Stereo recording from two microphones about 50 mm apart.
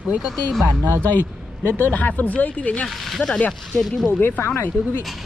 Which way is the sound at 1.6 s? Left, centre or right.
Left.